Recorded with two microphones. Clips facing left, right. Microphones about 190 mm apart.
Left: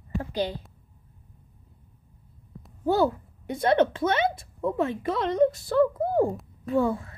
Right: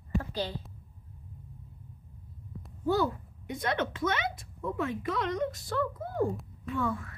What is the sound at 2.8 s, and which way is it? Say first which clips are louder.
A woman's voice: left 5 dB; 30° left (ahead or behind).